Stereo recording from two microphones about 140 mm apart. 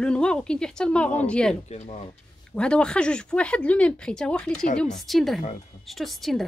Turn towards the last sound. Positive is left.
turn(degrees=0)  # may be behind; listen again after turning